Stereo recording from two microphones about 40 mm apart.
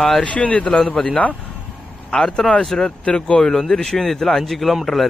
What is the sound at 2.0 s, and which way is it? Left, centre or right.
Speech, centre.